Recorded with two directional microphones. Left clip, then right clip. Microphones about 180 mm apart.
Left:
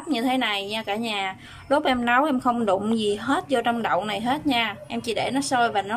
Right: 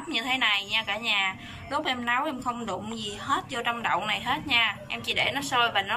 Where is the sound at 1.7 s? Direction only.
60° left (ahead or behind).